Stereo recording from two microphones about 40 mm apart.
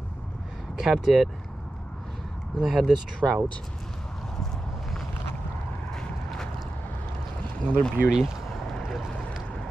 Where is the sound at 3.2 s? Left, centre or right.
Right.